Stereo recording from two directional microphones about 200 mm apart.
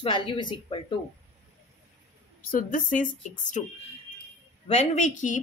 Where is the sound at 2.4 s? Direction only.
45° left (ahead or behind).